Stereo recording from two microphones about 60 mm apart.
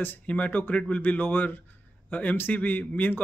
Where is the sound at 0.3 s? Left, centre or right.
Left.